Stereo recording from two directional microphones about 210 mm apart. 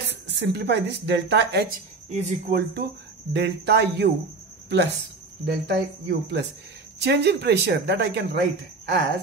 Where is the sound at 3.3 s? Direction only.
55° right (ahead or behind).